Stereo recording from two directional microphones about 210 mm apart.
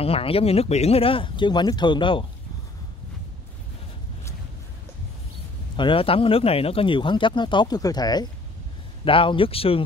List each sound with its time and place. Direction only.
0.0 s speech: 25° left (ahead or behind)
5.8 s speech: 25° left (ahead or behind)